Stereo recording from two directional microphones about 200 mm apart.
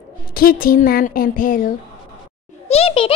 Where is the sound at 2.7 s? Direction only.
30° left (ahead or behind).